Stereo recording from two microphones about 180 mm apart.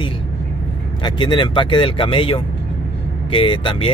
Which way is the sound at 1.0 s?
25° left (ahead or behind).